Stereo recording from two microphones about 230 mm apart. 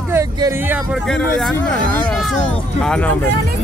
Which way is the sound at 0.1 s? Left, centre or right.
Centre.